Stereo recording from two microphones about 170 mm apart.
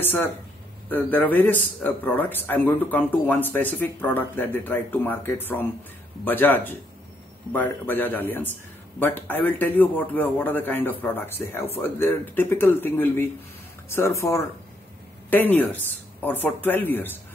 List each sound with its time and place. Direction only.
0.0 s speech: 10° left (ahead or behind)